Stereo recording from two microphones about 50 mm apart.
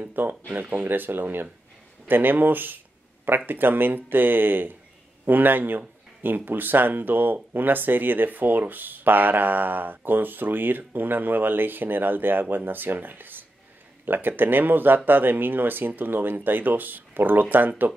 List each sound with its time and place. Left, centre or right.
0.0 s speech: right